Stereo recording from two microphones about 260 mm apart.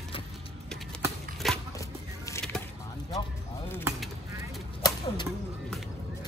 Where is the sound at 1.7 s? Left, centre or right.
Centre.